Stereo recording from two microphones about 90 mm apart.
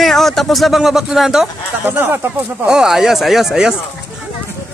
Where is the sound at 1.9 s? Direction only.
25° right (ahead or behind).